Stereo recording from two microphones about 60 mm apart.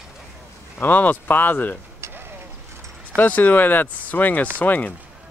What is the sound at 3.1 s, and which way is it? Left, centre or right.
Speech, left.